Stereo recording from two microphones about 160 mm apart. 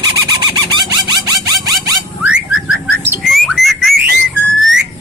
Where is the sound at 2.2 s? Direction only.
5° right (ahead or behind).